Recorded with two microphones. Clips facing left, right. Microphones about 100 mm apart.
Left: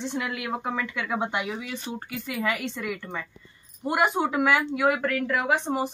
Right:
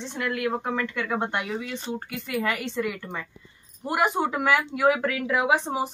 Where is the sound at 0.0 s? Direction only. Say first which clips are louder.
Right 2 dB; 5° left (ahead or behind).